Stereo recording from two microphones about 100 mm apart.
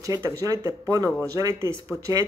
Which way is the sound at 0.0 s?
35° right (ahead or behind).